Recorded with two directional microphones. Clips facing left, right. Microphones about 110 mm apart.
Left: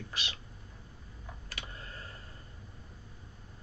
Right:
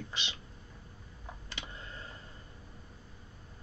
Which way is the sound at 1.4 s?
25° right (ahead or behind).